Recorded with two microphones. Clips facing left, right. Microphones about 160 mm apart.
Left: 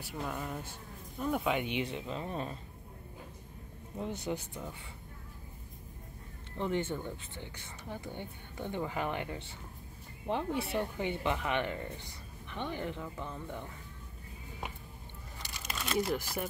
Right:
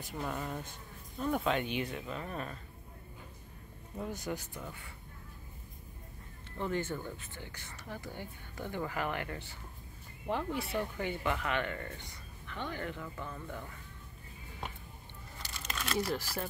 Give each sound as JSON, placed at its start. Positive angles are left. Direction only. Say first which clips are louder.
{"t": 0.0, "sound": "speech", "louder": "even", "side_deg": 0}
{"t": 4.2, "sound": "speech", "louder": "left 2 dB", "side_deg": 20}
{"t": 6.6, "sound": "speech", "louder": "left 2 dB", "side_deg": 20}
{"t": 15.3, "sound": "a sound", "louder": "even", "side_deg": 10}
{"t": 15.9, "sound": "speech", "louder": "left 2 dB", "side_deg": 20}